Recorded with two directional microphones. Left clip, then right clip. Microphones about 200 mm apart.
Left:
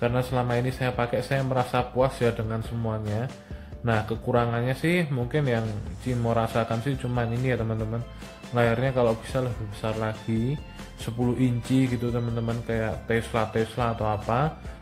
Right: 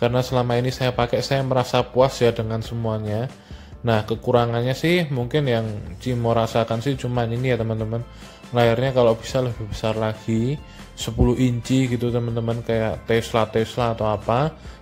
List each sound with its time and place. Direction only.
0.0 s speech: 25° right (ahead or behind)
11.2 s speech: 25° right (ahead or behind)